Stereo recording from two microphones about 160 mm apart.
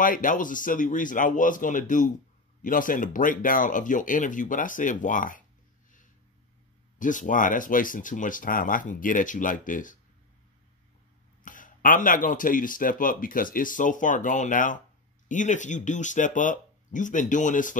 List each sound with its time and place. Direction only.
0.0 s speech: 55° left (ahead or behind)
7.0 s speech: 55° left (ahead or behind)
11.4 s speech: 55° left (ahead or behind)